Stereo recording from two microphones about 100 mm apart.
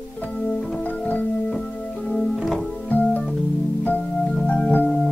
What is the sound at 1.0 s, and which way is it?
Music, 15° left (ahead or behind).